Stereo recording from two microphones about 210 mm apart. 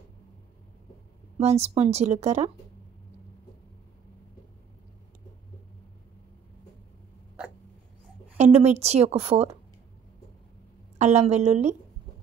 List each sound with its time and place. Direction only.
1.4 s speech: 30° right (ahead or behind)
8.4 s speech: 30° right (ahead or behind)
11.0 s speech: 30° right (ahead or behind)